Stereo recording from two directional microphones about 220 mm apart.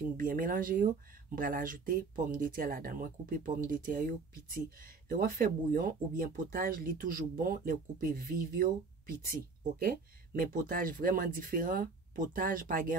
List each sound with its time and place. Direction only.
0.2 s speech: 40° right (ahead or behind)
10.4 s speech: 40° right (ahead or behind)